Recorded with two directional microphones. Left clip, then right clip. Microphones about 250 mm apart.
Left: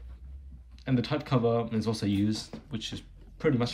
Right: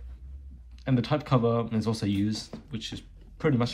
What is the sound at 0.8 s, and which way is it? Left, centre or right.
Speech, centre.